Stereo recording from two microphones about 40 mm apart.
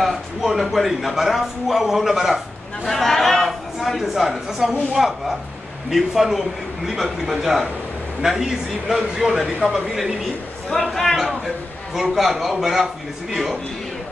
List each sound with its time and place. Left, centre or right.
0.0 s speech: centre
2.9 s speech: centre
4.5 s speech: centre
9.6 s speech: right
10.7 s speech: centre